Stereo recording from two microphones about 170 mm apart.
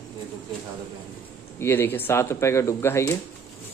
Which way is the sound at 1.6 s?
15° left (ahead or behind).